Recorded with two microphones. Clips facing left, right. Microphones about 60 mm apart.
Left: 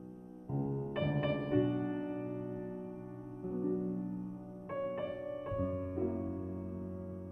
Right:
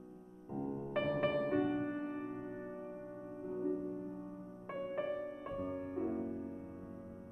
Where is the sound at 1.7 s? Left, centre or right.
Right.